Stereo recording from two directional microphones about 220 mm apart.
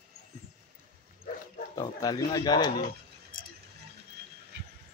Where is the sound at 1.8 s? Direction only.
15° left (ahead or behind).